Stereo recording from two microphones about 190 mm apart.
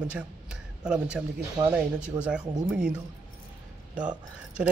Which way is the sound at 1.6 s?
20° right (ahead or behind).